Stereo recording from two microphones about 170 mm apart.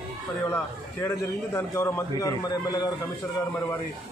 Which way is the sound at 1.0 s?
15° left (ahead or behind).